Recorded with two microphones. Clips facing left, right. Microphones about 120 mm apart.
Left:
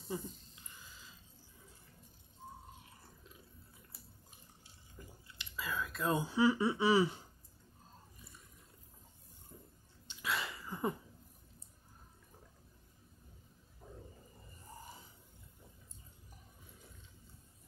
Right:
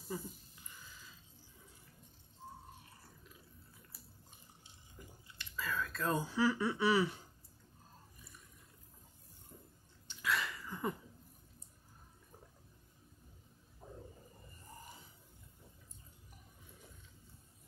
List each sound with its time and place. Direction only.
5.4 s speech: 15° left (ahead or behind)
10.0 s sneeze: 20° left (ahead or behind)